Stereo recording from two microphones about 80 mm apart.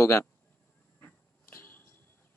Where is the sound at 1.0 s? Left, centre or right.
Left.